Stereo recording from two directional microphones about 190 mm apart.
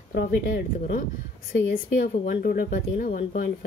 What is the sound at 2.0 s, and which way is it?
Speech, 45° left (ahead or behind).